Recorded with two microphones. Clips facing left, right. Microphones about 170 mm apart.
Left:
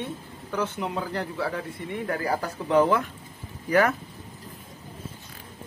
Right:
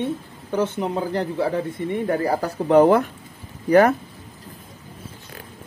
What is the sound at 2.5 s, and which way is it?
Speech, 50° right (ahead or behind).